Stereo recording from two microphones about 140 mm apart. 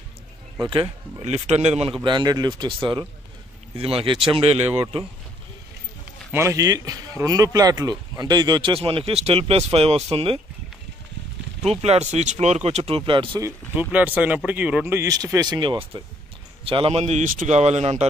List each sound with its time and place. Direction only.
0.7 s speech: 40° right (ahead or behind)
1.2 s speech: 50° right (ahead or behind)
2.0 s speech: 30° right (ahead or behind)
3.7 s speech: 45° right (ahead or behind)
6.3 s speech: 20° right (ahead or behind); by 10.4 s 45° right (ahead or behind)
11.6 s speech: 50° right (ahead or behind)
13.4 s speech: 10° right (ahead or behind)
15.0 s speech: 25° right (ahead or behind); by 18.0 s 50° right (ahead or behind)